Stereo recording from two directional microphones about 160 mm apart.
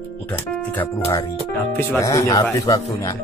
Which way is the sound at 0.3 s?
15° left (ahead or behind).